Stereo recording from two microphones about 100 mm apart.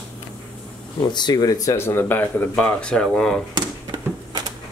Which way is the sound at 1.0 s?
45° left (ahead or behind).